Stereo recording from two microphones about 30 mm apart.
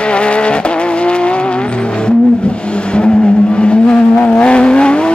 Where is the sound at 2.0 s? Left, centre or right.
Left.